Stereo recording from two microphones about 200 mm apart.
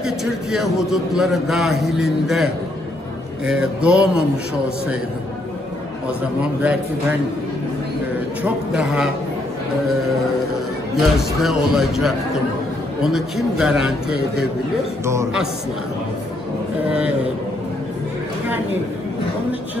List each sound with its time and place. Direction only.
0.0 s a man's voice: centre (ahead or behind)
6.6 s a man's voice: 5° right (ahead or behind)
8.4 s a man's voice: 5° right (ahead or behind)
11.0 s a man's voice: centre (ahead or behind)